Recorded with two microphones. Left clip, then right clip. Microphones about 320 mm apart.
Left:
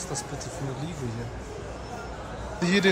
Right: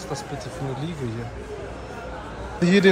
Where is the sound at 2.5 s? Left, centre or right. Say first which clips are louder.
Right 5 dB; centre.